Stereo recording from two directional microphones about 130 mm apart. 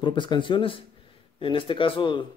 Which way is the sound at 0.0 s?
35° left (ahead or behind).